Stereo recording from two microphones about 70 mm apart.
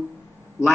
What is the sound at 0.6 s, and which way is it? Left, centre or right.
Speech, left.